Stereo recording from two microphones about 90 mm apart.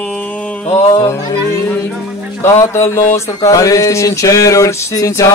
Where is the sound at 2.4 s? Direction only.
30° left (ahead or behind).